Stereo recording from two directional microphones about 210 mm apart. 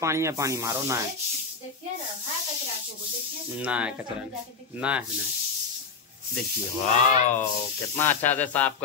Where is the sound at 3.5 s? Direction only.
5° right (ahead or behind).